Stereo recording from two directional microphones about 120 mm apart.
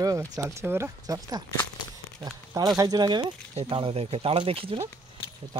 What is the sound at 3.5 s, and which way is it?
Speech, 55° right (ahead or behind).